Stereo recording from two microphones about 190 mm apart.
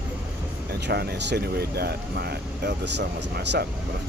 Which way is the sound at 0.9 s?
55° right (ahead or behind).